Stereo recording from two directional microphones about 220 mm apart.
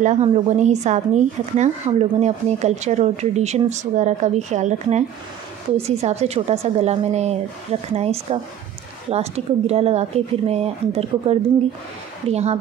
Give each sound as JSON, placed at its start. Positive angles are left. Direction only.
{"t": 0.0, "sound": "a woman's voice", "side_deg": -30}